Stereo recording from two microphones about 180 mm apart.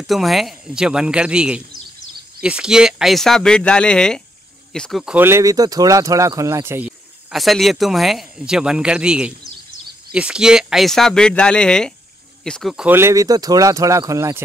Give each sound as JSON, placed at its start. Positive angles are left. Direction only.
{"t": 0.0, "sound": "speech", "side_deg": 0}